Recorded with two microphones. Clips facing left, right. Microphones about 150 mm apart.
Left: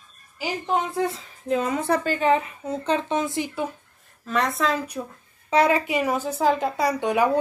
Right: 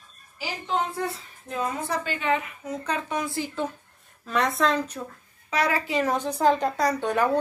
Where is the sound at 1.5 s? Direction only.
80° left.